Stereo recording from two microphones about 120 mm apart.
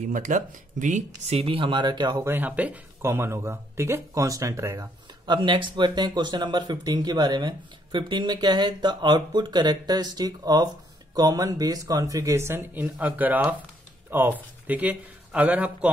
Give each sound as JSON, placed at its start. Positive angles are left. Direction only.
{"t": 0.1, "sound": "speech", "side_deg": -90}
{"t": 2.2, "sound": "speech", "side_deg": -15}
{"t": 5.2, "sound": "speech", "side_deg": -40}